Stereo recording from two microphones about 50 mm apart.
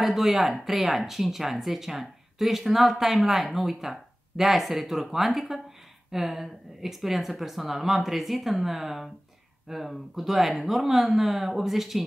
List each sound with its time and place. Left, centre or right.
0.0 s speech: centre